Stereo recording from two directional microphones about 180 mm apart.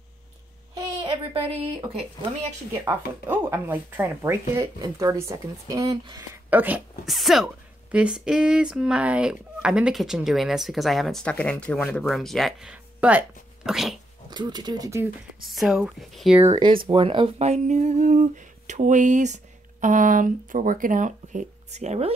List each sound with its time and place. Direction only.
1.0 s speech: 30° right (ahead or behind)
2.8 s speech: 15° right (ahead or behind)
14.3 s speech: 25° right (ahead or behind)
15.4 s speech: centre (ahead or behind)
16.8 s speech: 30° right (ahead or behind)